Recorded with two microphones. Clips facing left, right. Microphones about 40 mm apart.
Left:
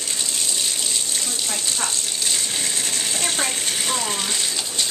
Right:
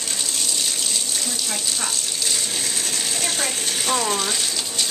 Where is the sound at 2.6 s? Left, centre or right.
Centre.